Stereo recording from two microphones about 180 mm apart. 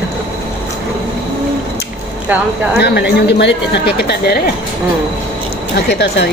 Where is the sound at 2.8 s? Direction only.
65° left (ahead or behind).